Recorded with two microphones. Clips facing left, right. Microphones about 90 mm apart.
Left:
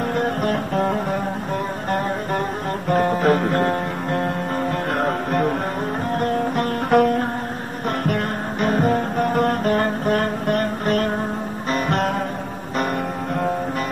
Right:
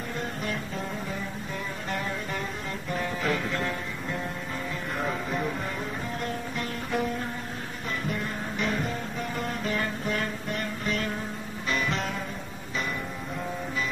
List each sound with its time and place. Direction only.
0.1 s music: 60° left (ahead or behind)
2.9 s music: 50° left (ahead or behind)